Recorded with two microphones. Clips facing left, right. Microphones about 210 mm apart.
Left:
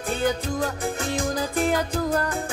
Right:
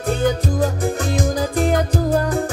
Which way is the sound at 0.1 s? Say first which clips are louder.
Right 5 dB; 40° right (ahead or behind).